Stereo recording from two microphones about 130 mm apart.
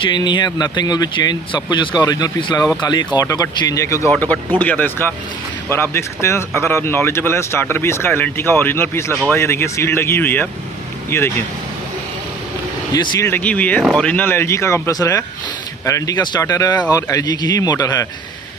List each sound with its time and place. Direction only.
0.0 s speech: 35° left (ahead or behind)
4.1 s speech: 10° left (ahead or behind)
12.9 s speech: 30° left (ahead or behind)
13.3 s speech: 10° left (ahead or behind); by 18.0 s 25° left (ahead or behind)